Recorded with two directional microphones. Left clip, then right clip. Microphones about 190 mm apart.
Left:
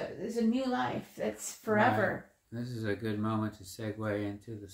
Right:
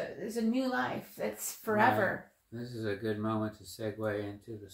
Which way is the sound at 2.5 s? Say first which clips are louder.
Left 1 dB; 35° left (ahead or behind).